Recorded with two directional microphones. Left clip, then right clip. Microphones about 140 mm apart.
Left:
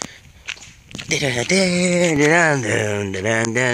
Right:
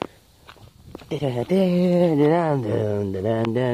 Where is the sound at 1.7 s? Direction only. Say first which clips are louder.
Left 2 dB; 10° right (ahead or behind).